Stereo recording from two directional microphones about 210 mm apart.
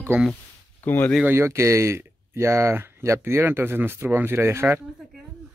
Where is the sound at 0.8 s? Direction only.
10° left (ahead or behind).